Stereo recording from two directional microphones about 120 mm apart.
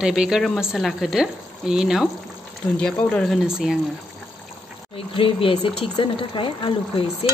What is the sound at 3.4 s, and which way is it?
Speech, 5° right (ahead or behind).